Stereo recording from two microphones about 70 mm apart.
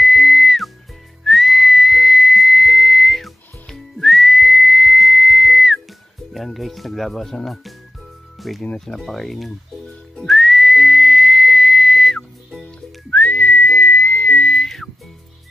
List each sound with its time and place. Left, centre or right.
0.0 s music: centre
1.2 s whistling: centre
6.3 s music: centre
8.4 s speech: centre
10.2 s whistling: centre
12.6 s whistling: left